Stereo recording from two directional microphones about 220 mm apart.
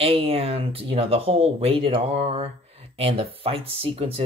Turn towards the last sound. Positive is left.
turn(degrees=-25)  # may be behind; listen again after turning